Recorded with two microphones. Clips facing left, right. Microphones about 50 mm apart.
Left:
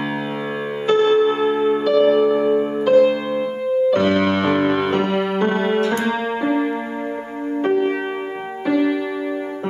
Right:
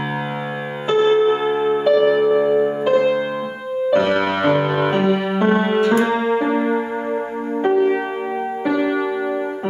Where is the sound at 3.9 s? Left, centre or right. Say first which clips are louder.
Even; centre.